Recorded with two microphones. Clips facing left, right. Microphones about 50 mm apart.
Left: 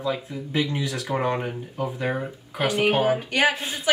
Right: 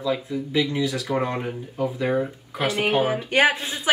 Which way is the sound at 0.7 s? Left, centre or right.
Left.